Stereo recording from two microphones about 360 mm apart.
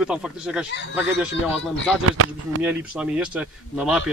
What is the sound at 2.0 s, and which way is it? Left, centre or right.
Speech, right.